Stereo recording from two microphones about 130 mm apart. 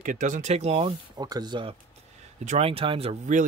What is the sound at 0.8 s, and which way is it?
Speech, 30° right (ahead or behind).